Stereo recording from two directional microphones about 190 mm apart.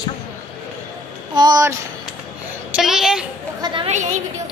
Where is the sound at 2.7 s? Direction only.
Centre (ahead or behind).